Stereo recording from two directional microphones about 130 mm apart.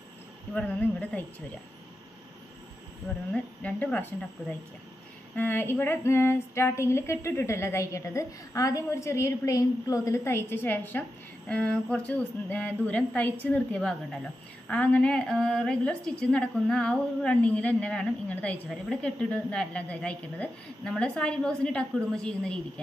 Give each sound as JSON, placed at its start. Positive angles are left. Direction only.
{"t": 0.6, "sound": "a woman's voice", "side_deg": 10}
{"t": 3.3, "sound": "a woman's voice", "side_deg": 10}
{"t": 5.3, "sound": "a sound", "side_deg": 15}
{"t": 12.1, "sound": "a woman's voice", "side_deg": 10}